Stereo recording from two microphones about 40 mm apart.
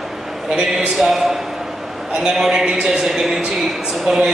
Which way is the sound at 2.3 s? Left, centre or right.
Centre.